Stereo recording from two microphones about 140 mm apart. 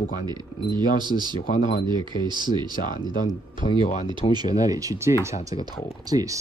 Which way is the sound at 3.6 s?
30° left (ahead or behind).